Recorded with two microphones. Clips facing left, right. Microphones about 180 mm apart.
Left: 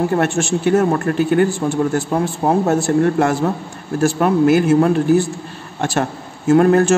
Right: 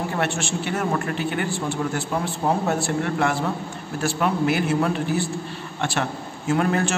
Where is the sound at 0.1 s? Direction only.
45° left (ahead or behind).